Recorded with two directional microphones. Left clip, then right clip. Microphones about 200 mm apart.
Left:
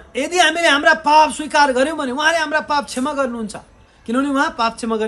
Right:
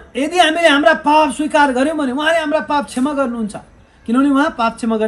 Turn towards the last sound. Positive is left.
turn(degrees=5)  # may be behind; listen again after turning